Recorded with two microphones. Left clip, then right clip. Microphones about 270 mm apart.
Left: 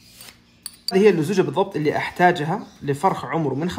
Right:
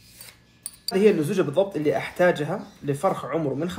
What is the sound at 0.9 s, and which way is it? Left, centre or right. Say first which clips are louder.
Speech: left 3 dB; left.